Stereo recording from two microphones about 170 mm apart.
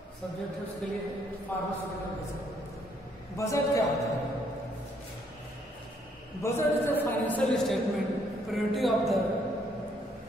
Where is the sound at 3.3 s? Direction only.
20° left (ahead or behind).